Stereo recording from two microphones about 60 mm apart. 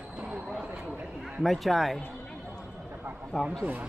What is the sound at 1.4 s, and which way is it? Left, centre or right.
Speech, centre.